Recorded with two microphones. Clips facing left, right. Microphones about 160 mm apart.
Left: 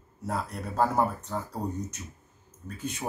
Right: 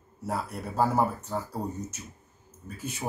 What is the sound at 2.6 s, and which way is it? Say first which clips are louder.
Speech: left 2 dB; 10° right (ahead or behind).